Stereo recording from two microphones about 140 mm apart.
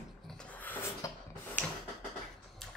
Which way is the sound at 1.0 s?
20° left (ahead or behind).